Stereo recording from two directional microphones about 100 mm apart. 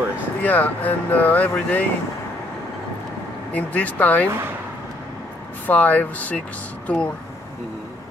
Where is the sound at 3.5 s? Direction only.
15° left (ahead or behind).